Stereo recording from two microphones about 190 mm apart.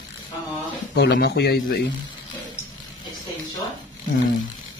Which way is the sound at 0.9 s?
60° left (ahead or behind).